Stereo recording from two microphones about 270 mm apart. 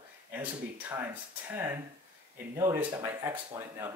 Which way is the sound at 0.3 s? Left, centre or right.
Centre.